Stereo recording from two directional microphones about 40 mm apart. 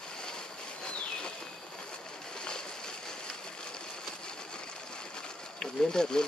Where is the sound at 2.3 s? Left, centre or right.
Centre.